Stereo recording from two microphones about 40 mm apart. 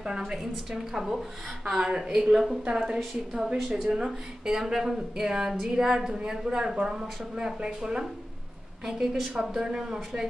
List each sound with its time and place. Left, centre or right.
0.0 s speech: centre
2.1 s a woman's voice: centre
2.7 s speech: centre
8.8 s speech: centre